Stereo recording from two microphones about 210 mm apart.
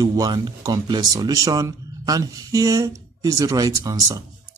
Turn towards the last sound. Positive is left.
turn(degrees=-15)  # may be behind; listen again after turning